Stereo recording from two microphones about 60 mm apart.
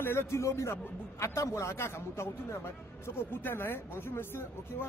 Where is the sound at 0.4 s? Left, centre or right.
Left.